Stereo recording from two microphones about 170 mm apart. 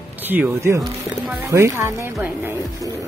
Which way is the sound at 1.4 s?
15° right (ahead or behind).